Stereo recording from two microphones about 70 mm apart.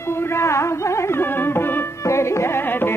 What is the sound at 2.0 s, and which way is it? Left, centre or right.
Music, left.